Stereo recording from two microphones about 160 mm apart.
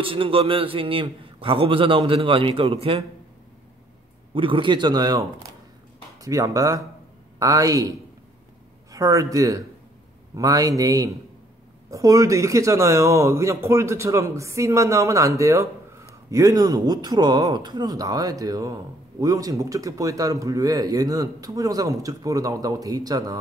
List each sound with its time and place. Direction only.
0.0 s a man's voice: 35° right (ahead or behind)
4.3 s speech: 35° right (ahead or behind)
6.2 s speech: 20° right (ahead or behind)
8.9 s speech: 20° right (ahead or behind)